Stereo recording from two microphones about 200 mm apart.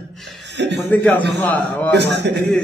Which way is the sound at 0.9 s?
10° left (ahead or behind).